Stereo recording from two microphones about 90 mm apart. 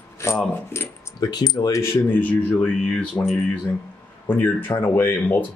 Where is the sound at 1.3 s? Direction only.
45° left (ahead or behind).